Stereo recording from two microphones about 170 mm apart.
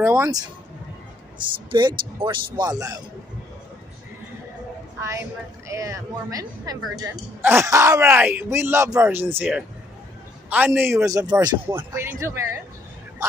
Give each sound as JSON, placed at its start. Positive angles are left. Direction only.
{"t": 0.0, "sound": "speech", "side_deg": -15}
{"t": 1.7, "sound": "a woman's voice", "side_deg": -25}
{"t": 5.7, "sound": "a woman's voice", "side_deg": -20}
{"t": 9.4, "sound": "speech", "side_deg": -5}
{"t": 11.9, "sound": "speech", "side_deg": -15}